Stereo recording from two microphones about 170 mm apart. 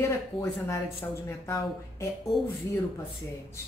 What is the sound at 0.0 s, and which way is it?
A woman's voice, 20° left (ahead or behind).